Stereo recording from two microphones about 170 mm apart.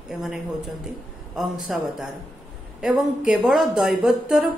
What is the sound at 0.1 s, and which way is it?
Speech, centre (ahead or behind).